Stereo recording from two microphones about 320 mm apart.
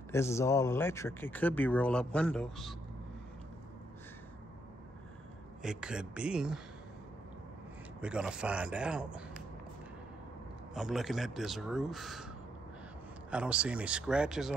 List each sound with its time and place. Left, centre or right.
0.1 s speech: centre
5.6 s speech: centre
8.0 s speech: centre
10.7 s speech: centre
13.3 s speech: centre